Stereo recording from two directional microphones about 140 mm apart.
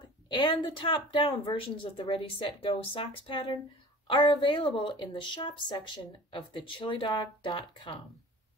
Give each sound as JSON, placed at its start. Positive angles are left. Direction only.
{"t": 0.0, "sound": "a woman's voice", "side_deg": 35}